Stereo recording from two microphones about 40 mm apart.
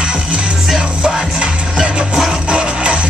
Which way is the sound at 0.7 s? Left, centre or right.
Right.